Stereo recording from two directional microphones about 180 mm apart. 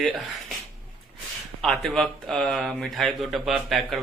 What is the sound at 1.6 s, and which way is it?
Speech, centre (ahead or behind).